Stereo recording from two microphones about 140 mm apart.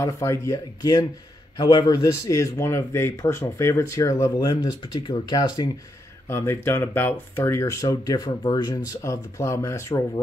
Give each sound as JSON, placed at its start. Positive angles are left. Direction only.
{"t": 0.0, "sound": "speech", "side_deg": 20}
{"t": 6.2, "sound": "speech", "side_deg": 20}